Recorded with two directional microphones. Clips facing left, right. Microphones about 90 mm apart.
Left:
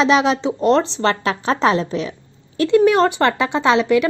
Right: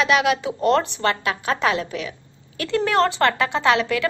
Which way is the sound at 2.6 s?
20° left (ahead or behind).